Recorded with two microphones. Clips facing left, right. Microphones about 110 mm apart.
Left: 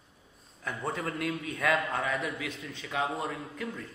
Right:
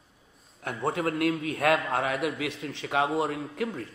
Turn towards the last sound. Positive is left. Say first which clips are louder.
# right 6 dB
turn(degrees=-65)  # may be behind; listen again after turning